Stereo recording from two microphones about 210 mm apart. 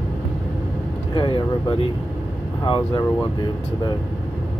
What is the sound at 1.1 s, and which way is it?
Speech, 25° left (ahead or behind).